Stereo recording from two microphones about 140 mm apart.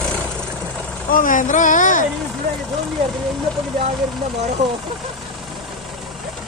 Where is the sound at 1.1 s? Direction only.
70° left (ahead or behind).